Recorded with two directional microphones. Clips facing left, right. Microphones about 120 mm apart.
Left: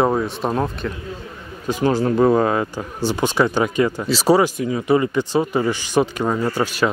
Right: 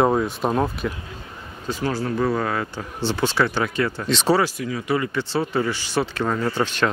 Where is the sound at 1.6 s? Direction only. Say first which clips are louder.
Left 6 dB; 15° left (ahead or behind).